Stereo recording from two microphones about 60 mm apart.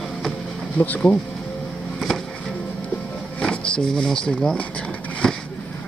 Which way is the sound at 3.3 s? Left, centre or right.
Centre.